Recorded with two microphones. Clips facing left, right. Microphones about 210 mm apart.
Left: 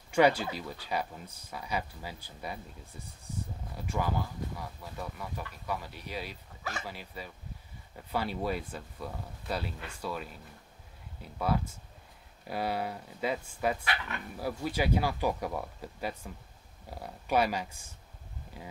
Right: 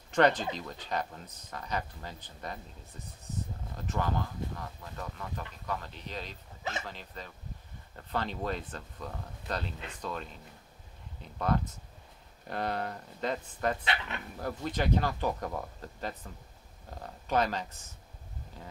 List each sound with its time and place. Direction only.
0.1 s speech: 10° left (ahead or behind)
13.8 s speech: 20° right (ahead or behind)
14.3 s speech: 5° left (ahead or behind)